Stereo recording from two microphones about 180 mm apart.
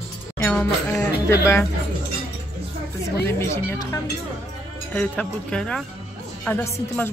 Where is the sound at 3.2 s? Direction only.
15° left (ahead or behind).